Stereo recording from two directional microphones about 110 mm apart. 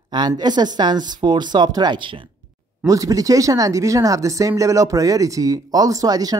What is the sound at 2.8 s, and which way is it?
Speech, 30° right (ahead or behind).